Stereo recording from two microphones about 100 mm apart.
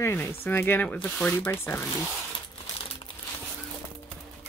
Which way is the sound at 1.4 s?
25° left (ahead or behind).